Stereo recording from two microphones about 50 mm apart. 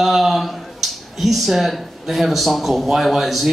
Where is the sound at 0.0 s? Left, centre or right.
Centre.